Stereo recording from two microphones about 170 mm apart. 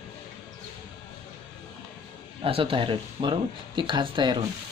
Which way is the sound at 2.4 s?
30° right (ahead or behind).